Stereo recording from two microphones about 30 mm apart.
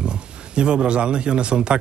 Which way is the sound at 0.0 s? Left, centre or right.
Right.